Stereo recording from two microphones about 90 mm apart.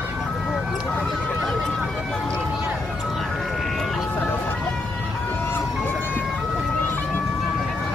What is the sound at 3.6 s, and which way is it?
Vehicle, centre (ahead or behind).